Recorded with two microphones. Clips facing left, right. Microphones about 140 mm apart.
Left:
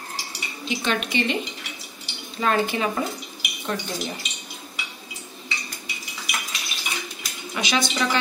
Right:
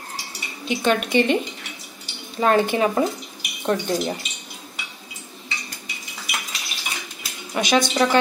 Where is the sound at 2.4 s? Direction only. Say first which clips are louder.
Right 4 dB; 35° right (ahead or behind).